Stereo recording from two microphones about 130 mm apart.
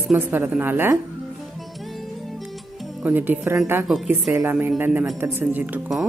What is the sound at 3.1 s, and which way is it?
Speech, 15° right (ahead or behind).